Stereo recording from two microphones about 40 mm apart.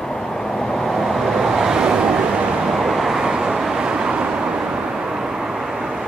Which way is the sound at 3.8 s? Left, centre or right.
Right.